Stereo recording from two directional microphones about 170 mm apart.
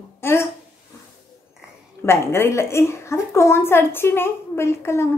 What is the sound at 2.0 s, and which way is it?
A woman's voice, 15° left (ahead or behind).